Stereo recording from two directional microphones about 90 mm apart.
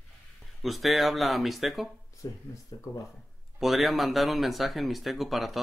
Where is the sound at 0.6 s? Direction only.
Centre (ahead or behind).